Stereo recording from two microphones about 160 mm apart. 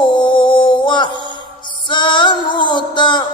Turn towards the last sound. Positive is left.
turn(degrees=30)  # may be behind; listen again after turning